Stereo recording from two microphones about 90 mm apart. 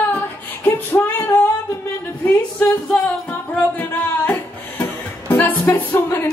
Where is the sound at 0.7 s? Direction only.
30° left (ahead or behind).